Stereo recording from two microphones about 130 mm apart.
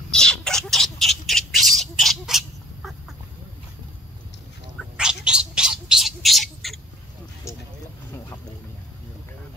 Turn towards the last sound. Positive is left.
turn(degrees=20)  # may be behind; listen again after turning